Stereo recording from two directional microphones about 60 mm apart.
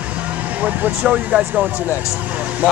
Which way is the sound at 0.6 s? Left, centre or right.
Right.